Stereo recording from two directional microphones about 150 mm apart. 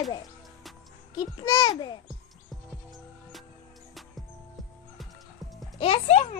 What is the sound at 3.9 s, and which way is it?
Music, centre (ahead or behind).